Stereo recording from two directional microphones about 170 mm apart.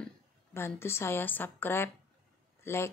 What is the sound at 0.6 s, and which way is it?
A woman's voice, 15° left (ahead or behind).